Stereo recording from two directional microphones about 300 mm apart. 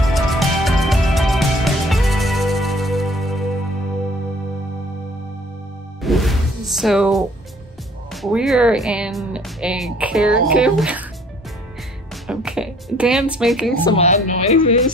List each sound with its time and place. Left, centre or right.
0.0 s music: centre
6.0 s music: centre
8.1 s speech: centre
12.3 s speech: centre
13.9 s speech: left